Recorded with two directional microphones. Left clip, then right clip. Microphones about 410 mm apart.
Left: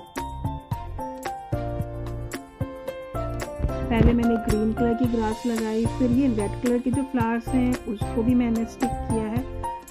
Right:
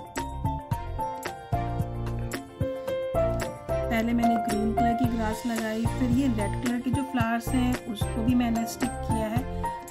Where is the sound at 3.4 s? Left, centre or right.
Centre.